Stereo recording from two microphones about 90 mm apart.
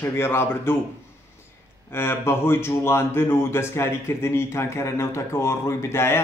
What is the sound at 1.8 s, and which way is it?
Speech, 30° left (ahead or behind).